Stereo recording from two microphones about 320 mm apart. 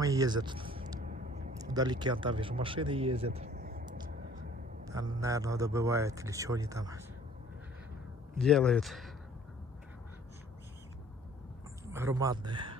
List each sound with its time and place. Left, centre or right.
0.0 s a man's voice: centre
3.5 s a sound: right
5.2 s speech: centre
8.4 s a man's voice: centre
11.8 s a man's voice: centre